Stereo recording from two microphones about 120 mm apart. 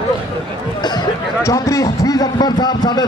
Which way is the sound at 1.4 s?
25° left (ahead or behind).